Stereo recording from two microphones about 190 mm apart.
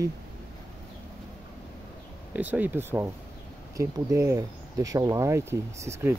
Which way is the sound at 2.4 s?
10° right (ahead or behind).